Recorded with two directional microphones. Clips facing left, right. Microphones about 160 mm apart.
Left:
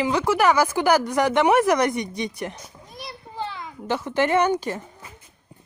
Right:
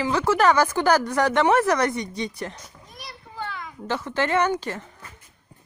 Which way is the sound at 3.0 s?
25° left (ahead or behind).